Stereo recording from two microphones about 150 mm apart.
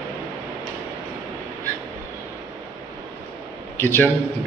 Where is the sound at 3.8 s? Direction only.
15° left (ahead or behind).